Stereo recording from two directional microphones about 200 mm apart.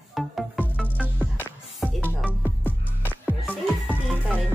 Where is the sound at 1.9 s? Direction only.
5° right (ahead or behind).